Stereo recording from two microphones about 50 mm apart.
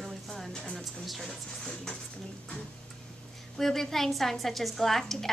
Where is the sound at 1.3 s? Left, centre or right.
Centre.